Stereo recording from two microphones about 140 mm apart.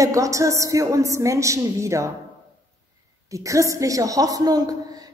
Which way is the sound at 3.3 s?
20° right (ahead or behind).